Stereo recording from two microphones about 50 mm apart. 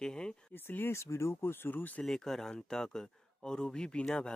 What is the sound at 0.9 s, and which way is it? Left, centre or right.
Speech, left.